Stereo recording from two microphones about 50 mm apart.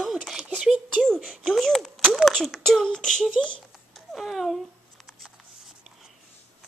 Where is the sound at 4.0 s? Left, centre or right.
Centre.